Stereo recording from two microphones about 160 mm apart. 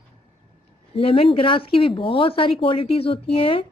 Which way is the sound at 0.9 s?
35° left (ahead or behind).